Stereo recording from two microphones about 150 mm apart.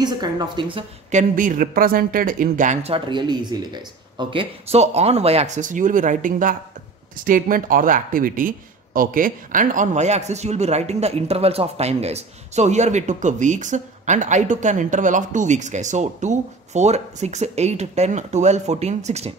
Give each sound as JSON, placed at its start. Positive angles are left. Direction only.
{"t": 0.0, "sound": "a woman's voice", "side_deg": -30}
{"t": 1.1, "sound": "speech", "side_deg": -65}
{"t": 2.9, "sound": "speech", "side_deg": -30}